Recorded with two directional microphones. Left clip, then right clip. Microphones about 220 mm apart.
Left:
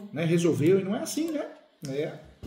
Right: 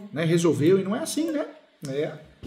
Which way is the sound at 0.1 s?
15° right (ahead or behind).